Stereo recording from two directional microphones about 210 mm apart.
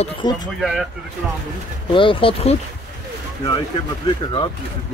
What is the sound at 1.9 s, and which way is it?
Speech, 25° left (ahead or behind).